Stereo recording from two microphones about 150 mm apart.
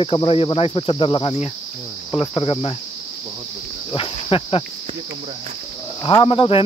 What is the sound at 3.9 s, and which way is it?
Speech, 35° left (ahead or behind).